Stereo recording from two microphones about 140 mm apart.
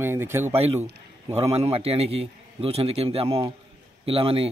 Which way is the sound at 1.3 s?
45° right (ahead or behind).